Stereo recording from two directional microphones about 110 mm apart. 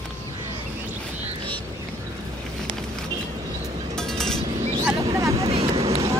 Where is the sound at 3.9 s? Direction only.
5° left (ahead or behind).